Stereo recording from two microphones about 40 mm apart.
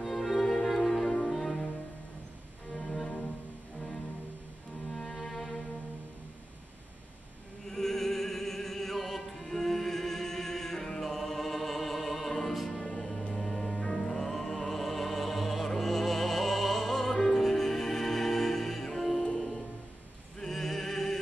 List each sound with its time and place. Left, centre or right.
0.0 s music: centre
2.7 s music: centre
5.1 s cello: centre
7.6 s music: centre